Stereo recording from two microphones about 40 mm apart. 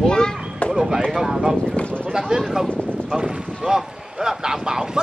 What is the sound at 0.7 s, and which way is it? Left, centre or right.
Speech, centre.